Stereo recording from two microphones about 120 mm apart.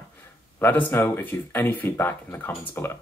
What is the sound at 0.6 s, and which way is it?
Speech, 15° left (ahead or behind).